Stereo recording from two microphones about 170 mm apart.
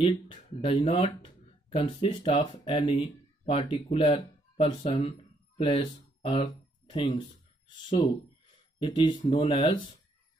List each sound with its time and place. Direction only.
0.0 s speech: 30° left (ahead or behind)